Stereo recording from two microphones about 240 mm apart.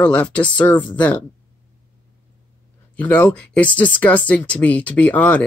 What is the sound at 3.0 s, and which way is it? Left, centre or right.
Speech, centre.